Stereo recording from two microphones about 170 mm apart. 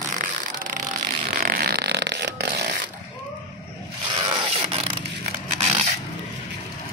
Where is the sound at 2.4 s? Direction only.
55° right (ahead or behind).